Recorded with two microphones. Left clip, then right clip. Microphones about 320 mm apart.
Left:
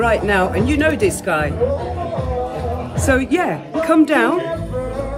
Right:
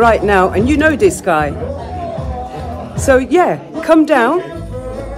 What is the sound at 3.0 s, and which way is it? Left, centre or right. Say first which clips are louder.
Speech: right 7 dB; centre.